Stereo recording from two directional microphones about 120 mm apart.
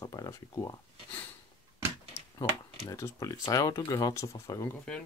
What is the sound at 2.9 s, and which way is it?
Speech, 30° left (ahead or behind).